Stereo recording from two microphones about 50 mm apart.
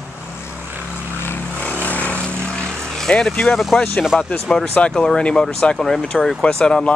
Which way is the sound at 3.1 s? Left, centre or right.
Centre.